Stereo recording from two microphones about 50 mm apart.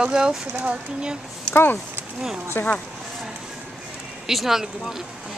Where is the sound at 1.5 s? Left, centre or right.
Left.